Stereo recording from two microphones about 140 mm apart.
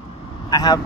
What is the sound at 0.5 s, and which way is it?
Speech, 30° left (ahead or behind).